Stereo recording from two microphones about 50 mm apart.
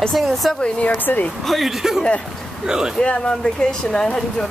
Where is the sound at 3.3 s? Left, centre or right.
Centre.